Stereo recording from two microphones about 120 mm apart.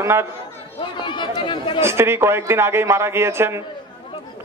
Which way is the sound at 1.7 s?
20° right (ahead or behind).